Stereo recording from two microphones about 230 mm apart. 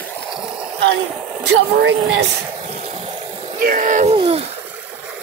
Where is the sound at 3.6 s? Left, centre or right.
Right.